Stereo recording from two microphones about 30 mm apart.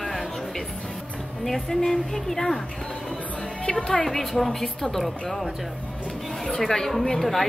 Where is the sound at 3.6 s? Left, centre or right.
Left.